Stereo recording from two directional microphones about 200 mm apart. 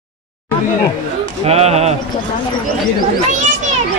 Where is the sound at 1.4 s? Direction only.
30° right (ahead or behind).